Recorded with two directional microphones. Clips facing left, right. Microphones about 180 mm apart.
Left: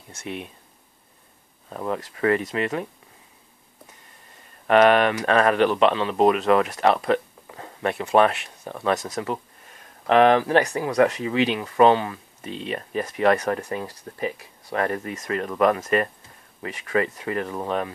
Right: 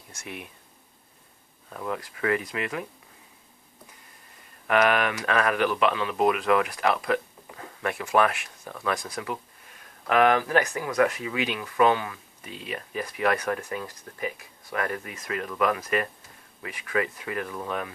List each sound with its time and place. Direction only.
0.2 s speech: 25° left (ahead or behind)
1.7 s speech: 40° left (ahead or behind)
4.6 s speech: 35° left (ahead or behind)
10.0 s speech: 30° left (ahead or behind)